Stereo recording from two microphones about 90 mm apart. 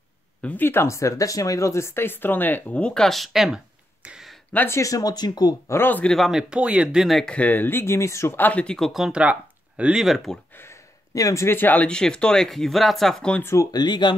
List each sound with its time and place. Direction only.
0.4 s speech: 20° left (ahead or behind); by 4.3 s 10° right (ahead or behind)
4.6 s speech: 35° left (ahead or behind)
5.7 s speech: 25° left (ahead or behind)
6.0 s speech: centre (ahead or behind)
6.5 s speech: 10° right (ahead or behind)
7.2 s speech: 15° left (ahead or behind)
8.7 s speech: centre (ahead or behind)
10.5 s a sound: 25° left (ahead or behind)
11.1 s speech: 35° left (ahead or behind); by 13.4 s 5° left (ahead or behind)
13.4 s speech: 30° left (ahead or behind)
13.7 s speech: 50° left (ahead or behind)